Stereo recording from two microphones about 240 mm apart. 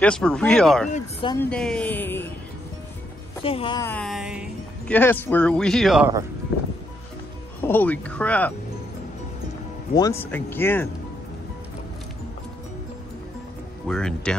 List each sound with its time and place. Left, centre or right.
0.0 s speech: centre
0.8 s speech: left
1.3 s speech: centre
3.4 s speech: left
3.8 s speech: centre
7.6 s speech: centre
9.9 s speech: centre
13.8 s speech: centre